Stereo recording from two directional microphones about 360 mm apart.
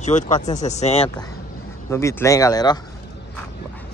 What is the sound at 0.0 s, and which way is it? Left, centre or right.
Speech, centre.